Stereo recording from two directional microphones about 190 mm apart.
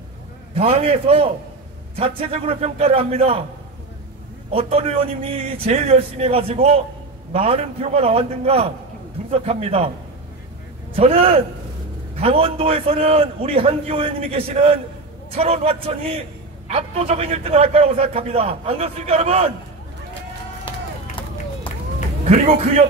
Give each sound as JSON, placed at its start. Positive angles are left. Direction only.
{"t": 0.6, "sound": "a man's voice", "side_deg": -30}
{"t": 4.5, "sound": "a man's voice", "side_deg": -30}
{"t": 11.0, "sound": "a man's voice", "side_deg": -30}